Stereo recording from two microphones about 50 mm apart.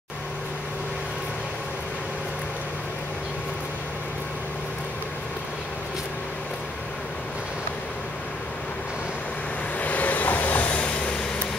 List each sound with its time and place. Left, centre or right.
9.8 s vehicle: left